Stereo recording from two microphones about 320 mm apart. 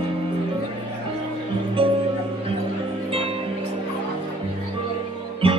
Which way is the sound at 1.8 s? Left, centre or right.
Centre.